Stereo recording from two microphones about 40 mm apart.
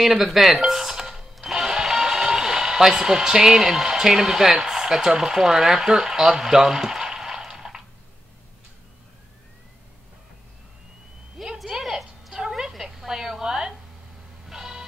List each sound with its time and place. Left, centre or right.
0.0 s music: centre
4.6 s speech: centre
11.4 s a sound: centre